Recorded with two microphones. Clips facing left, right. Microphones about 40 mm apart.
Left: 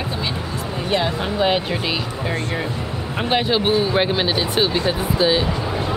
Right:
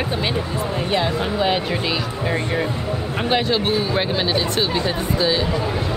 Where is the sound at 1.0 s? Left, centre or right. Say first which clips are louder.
Even; centre.